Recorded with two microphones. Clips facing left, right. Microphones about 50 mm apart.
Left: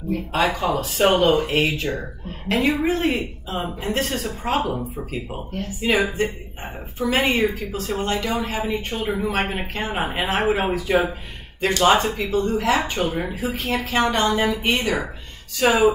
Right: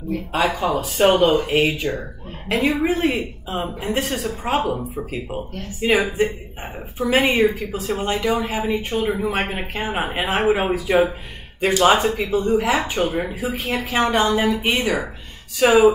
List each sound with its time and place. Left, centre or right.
0.1 s a woman's voice: centre
3.5 s speech: centre
5.8 s speech: centre
6.0 s speech: centre